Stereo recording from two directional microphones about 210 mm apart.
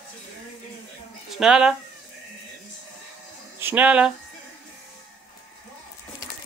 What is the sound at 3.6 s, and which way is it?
Speech, 10° right (ahead or behind).